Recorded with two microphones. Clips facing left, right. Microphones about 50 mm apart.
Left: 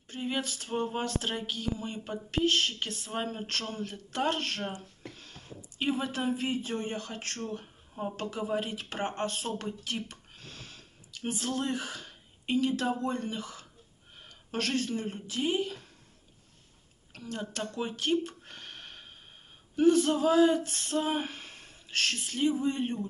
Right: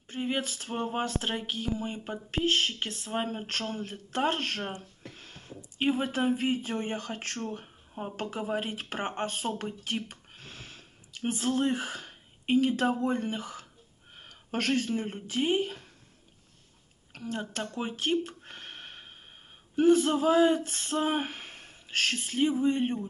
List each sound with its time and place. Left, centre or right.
0.0 s speech: right
14.1 s speech: right
17.1 s speech: right